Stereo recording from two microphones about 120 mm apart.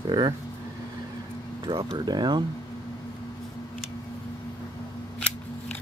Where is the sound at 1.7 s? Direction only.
45° right (ahead or behind).